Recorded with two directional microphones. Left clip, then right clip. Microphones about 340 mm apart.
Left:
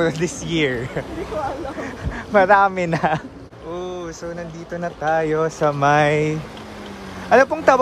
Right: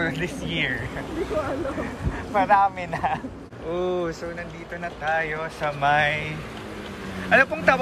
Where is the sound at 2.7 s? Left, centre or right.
Left.